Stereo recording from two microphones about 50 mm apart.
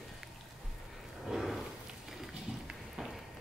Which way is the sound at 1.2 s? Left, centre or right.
Centre.